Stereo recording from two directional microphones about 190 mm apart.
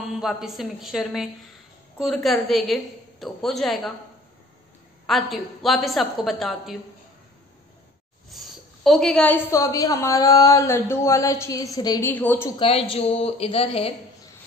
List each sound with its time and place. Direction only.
0.1 s a woman's voice: centre (ahead or behind)
5.0 s a woman's voice: centre (ahead or behind)
8.3 s a woman's voice: centre (ahead or behind)
12.5 s a woman's voice: 30° left (ahead or behind)